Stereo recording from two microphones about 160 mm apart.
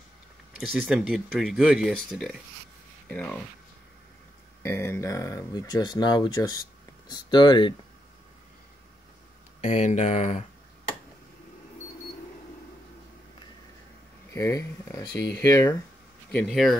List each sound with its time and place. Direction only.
0.6 s speech: 5° right (ahead or behind)
4.6 s speech: 15° left (ahead or behind)
9.6 s speech: 45° left (ahead or behind)
14.3 s speech: 20° left (ahead or behind)
16.3 s speech: 5° left (ahead or behind)